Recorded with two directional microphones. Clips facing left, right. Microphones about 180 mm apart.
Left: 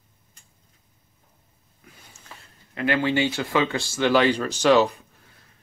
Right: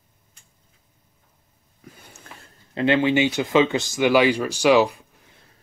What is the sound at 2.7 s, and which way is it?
Speech, 25° right (ahead or behind).